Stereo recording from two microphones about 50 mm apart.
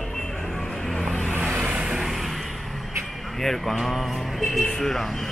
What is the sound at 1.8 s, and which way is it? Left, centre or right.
Vehicle, centre.